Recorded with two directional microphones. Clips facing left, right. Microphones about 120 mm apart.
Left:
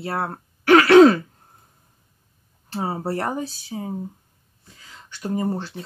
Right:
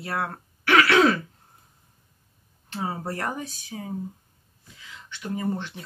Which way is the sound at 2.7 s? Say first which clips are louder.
Left 5 dB; 30° left (ahead or behind).